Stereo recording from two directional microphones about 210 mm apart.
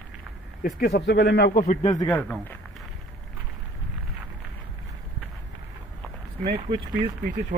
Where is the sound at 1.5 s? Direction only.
35° left (ahead or behind).